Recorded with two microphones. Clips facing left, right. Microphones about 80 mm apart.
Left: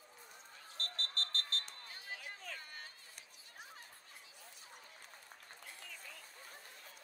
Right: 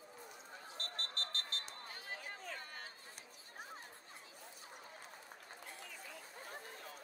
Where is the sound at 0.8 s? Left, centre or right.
Left.